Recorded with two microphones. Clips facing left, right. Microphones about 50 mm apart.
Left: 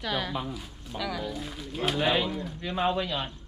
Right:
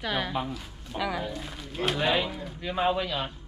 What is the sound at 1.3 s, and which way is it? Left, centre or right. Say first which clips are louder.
Speech: left 1 dB; centre.